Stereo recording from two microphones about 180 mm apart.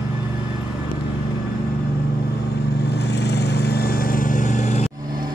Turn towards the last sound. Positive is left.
turn(degrees=40)  # may be behind; listen again after turning